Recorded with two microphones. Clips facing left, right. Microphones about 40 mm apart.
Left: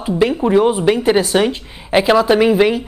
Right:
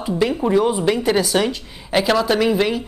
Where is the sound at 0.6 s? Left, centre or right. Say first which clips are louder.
Left 4 dB; left.